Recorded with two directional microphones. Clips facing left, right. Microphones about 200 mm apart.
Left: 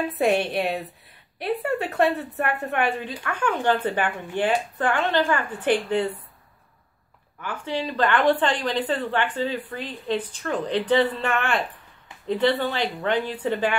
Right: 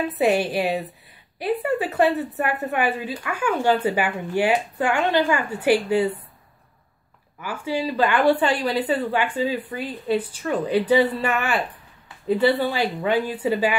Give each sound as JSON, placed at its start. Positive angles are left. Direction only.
{"t": 0.1, "sound": "a woman's voice", "side_deg": -5}
{"t": 7.3, "sound": "a woman's voice", "side_deg": -5}